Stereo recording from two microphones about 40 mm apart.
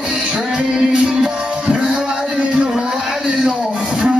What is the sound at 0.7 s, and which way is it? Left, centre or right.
Music, centre.